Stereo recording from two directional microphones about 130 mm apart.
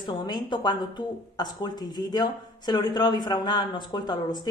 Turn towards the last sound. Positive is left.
turn(degrees=35)  # may be behind; listen again after turning